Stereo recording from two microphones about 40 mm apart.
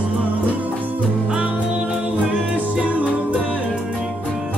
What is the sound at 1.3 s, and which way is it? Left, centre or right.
Music, right.